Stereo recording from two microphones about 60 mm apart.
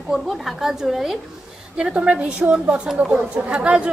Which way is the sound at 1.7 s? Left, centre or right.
Centre.